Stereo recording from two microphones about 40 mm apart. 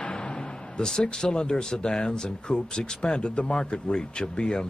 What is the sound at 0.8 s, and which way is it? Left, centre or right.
Speech, centre.